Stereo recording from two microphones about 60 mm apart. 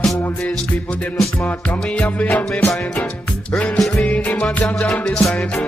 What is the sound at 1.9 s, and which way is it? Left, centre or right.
Music, left.